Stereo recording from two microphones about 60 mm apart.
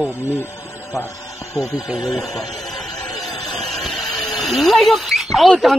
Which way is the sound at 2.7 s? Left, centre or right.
Left.